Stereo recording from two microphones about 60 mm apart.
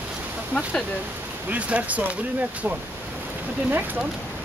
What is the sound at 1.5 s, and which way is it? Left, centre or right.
Speech, right.